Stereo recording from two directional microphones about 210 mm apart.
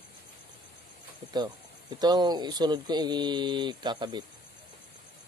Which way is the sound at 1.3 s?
20° right (ahead or behind).